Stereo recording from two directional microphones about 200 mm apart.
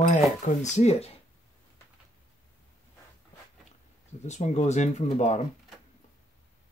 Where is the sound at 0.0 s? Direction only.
40° left (ahead or behind).